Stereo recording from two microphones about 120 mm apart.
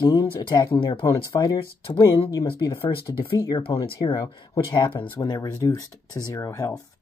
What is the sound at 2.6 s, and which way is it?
Speech, 45° left (ahead or behind).